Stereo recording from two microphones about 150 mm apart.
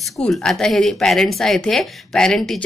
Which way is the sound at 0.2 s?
5° left (ahead or behind).